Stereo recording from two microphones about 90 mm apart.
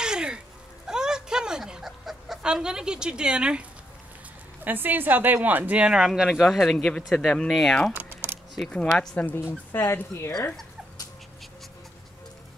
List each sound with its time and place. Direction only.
0.0 s a sound: 10° right (ahead or behind)
0.8 s dog: 5° right (ahead or behind)
4.6 s speech: 20° right (ahead or behind); by 7.9 s 5° left (ahead or behind)
7.9 s typing: 20° right (ahead or behind)
8.5 s speech: 5° left (ahead or behind)
9.7 s speech: 25° left (ahead or behind)